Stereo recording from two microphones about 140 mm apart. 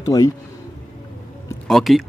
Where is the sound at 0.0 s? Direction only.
25° left (ahead or behind).